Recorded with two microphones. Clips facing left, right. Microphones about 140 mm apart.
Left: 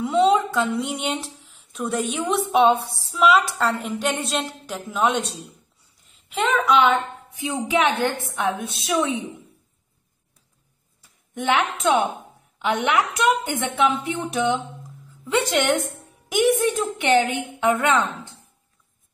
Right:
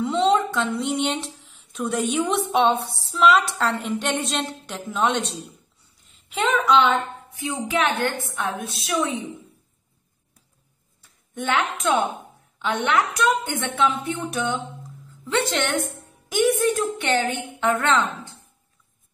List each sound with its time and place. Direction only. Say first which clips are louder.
0.0 s a woman's voice: left 2 dB; 5° left (ahead or behind)
7.3 s a woman's voice: left 2 dB; 15° left (ahead or behind)
11.0 s a woman's voice: left 1 dB; 10° left (ahead or behind)
16.6 s a woman's voice: right 1 dB; 25° left (ahead or behind)
17.0 s a woman's voice: left 4 dB; 15° left (ahead or behind)